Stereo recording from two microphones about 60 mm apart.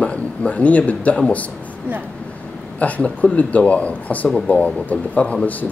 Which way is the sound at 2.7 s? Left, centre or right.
Left.